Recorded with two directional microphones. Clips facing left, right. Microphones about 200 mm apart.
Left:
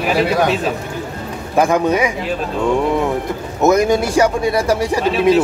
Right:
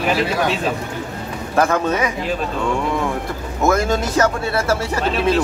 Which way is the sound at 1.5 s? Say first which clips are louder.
Left 3 dB; 15° left (ahead or behind).